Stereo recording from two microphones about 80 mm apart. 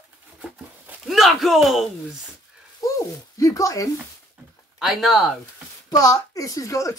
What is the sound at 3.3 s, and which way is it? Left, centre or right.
Speech, left.